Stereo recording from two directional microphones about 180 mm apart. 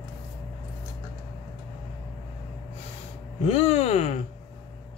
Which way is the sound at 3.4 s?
35° left (ahead or behind).